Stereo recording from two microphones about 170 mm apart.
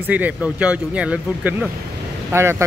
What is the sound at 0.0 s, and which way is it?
Speech, 10° right (ahead or behind).